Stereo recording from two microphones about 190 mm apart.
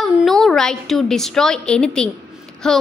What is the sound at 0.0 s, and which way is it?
A woman's voice, centre (ahead or behind).